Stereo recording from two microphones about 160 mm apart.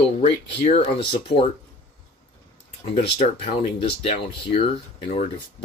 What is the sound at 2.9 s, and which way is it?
Speech, 35° left (ahead or behind).